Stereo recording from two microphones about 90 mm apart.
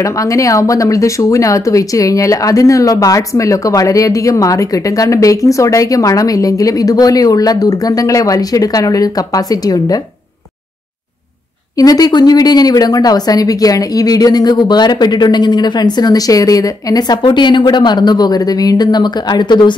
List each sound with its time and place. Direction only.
0.0 s speech: 35° left (ahead or behind)
11.8 s speech: 45° left (ahead or behind)
17.2 s speech: 60° left (ahead or behind)